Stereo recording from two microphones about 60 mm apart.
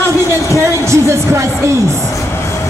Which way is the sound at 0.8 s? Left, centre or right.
Right.